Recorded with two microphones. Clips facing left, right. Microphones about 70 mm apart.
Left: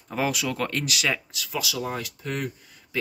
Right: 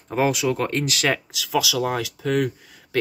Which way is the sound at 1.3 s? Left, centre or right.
Right.